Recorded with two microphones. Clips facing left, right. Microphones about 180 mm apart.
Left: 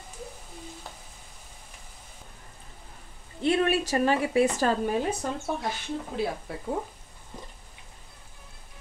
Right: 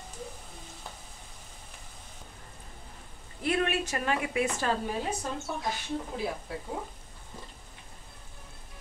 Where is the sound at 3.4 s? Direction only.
30° left (ahead or behind).